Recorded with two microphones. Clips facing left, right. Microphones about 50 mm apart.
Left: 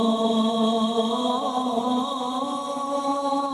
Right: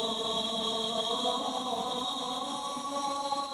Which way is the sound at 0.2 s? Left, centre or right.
Left.